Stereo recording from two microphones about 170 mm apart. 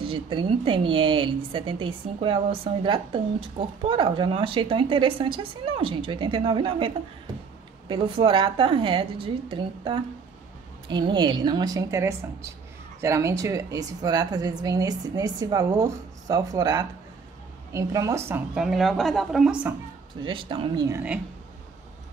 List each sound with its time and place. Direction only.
0.0 s a woman's voice: 30° right (ahead or behind)
7.9 s a woman's voice: 30° right (ahead or behind)
18.5 s a woman's voice: centre (ahead or behind)
20.2 s a woman's voice: 30° right (ahead or behind)